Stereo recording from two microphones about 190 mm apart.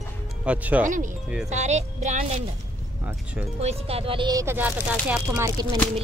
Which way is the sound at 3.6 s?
30° right (ahead or behind).